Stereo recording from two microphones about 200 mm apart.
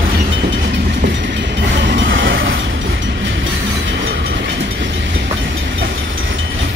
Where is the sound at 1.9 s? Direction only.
60° right (ahead or behind).